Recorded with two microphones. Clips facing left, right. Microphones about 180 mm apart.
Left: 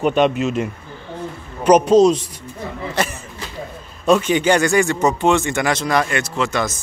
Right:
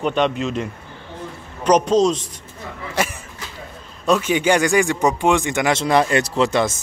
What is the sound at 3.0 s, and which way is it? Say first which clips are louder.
Speech: right 1 dB; 10° right (ahead or behind).